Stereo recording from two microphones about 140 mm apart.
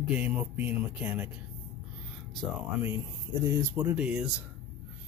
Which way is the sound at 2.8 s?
20° right (ahead or behind).